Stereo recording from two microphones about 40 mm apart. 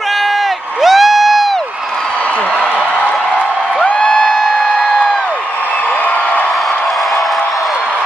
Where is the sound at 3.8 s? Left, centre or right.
Left.